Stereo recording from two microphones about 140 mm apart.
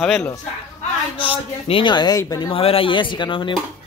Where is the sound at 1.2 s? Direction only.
40° left (ahead or behind).